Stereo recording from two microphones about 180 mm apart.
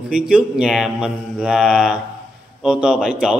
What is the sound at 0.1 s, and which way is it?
Speech, 5° right (ahead or behind).